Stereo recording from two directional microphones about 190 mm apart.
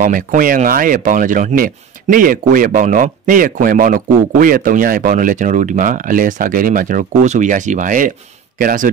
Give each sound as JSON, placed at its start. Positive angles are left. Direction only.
{"t": 0.0, "sound": "speech", "side_deg": -45}